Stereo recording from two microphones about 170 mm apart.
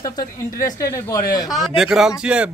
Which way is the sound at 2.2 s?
5° right (ahead or behind).